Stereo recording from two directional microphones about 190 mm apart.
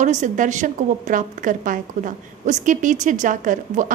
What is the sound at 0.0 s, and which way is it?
A woman's voice, 40° right (ahead or behind).